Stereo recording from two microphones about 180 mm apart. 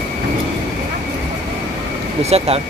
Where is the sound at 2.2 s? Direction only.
35° right (ahead or behind).